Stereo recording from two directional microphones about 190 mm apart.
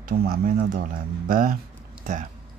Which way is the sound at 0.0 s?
50° right (ahead or behind).